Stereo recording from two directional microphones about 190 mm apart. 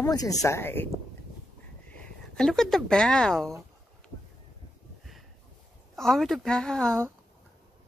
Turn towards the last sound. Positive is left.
turn(degrees=5)  # may be behind; listen again after turning